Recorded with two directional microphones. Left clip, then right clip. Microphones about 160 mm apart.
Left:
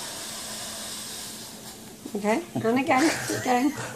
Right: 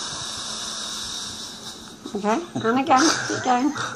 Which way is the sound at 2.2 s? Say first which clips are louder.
Right 2 dB; 5° right (ahead or behind).